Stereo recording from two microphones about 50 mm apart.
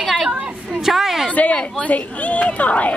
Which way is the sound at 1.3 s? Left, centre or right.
Left.